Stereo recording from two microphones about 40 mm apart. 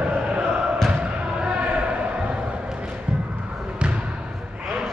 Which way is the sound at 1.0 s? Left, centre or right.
Right.